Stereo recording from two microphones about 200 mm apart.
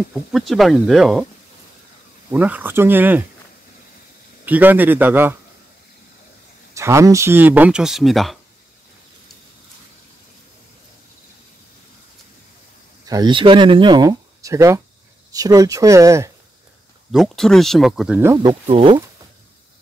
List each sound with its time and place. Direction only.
0.1 s speech: centre (ahead or behind)
2.3 s speech: 10° right (ahead or behind)
4.5 s speech: 10° right (ahead or behind)
6.7 s speech: 15° right (ahead or behind)
13.0 s speech: 20° right (ahead or behind)
17.1 s speech: centre (ahead or behind)
18.3 s speech: 20° right (ahead or behind)